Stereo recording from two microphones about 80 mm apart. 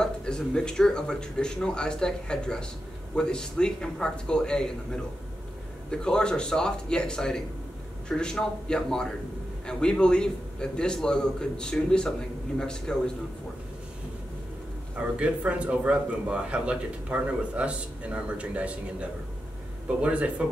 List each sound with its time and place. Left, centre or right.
0.0 s speech: centre
15.0 s speech: centre